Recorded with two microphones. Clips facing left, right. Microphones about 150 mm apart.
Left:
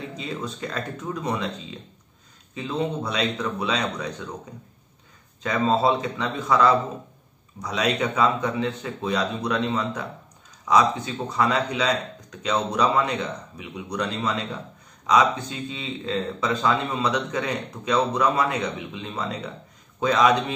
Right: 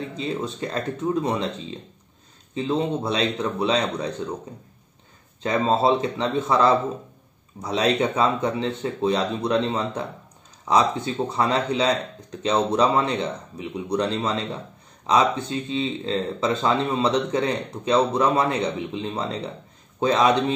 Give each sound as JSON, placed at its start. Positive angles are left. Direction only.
{"t": 0.2, "sound": "speech", "side_deg": -25}
{"t": 2.5, "sound": "speech", "side_deg": -25}
{"t": 5.4, "sound": "speech", "side_deg": -30}